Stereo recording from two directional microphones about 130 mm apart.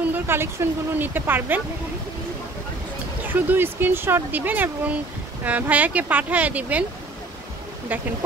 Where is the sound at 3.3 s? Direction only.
15° right (ahead or behind).